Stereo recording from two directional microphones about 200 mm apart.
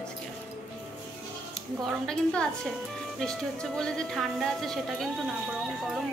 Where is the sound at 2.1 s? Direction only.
5° left (ahead or behind).